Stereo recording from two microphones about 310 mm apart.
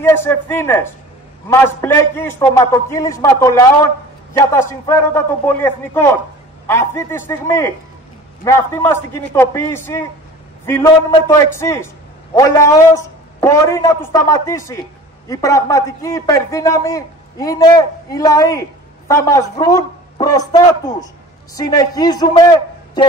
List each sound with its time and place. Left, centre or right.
0.0 s a man's voice: centre